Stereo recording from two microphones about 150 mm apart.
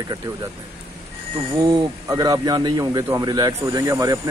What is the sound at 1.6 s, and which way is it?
Speech, 25° right (ahead or behind).